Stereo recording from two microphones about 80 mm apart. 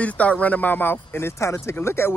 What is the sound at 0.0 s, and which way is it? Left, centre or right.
Speech, centre.